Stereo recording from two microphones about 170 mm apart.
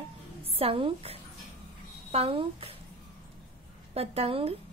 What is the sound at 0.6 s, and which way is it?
A woman's voice, 30° right (ahead or behind).